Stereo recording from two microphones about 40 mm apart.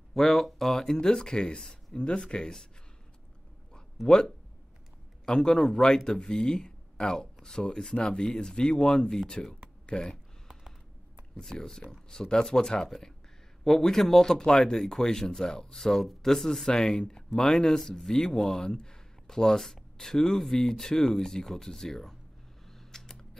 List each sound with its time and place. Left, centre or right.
0.1 s speech: centre; by 2.5 s left
4.1 s speech: centre
11.3 s speech: centre
13.7 s speech: centre
22.7 s a sound: centre